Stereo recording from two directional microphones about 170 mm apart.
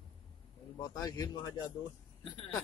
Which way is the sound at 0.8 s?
20° left (ahead or behind).